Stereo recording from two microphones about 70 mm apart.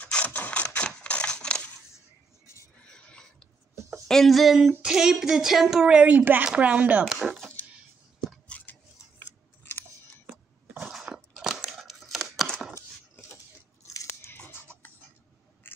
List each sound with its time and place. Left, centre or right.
0.0 s crushing: left
2.8 s a sound: centre
4.1 s speech: centre
8.5 s a sound: left
10.8 s crunch: centre
11.1 s crumpling: centre
14.0 s biting: left
15.7 s duck: left